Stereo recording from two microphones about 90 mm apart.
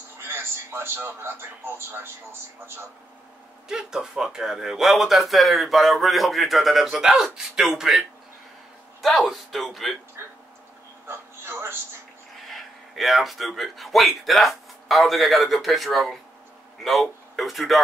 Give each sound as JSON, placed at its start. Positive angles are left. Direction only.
{"t": 0.2, "sound": "speech", "side_deg": -30}
{"t": 3.6, "sound": "speech", "side_deg": -5}
{"t": 9.0, "sound": "speech", "side_deg": 0}
{"t": 11.1, "sound": "speech", "side_deg": -25}
{"t": 12.4, "sound": "speech", "side_deg": 0}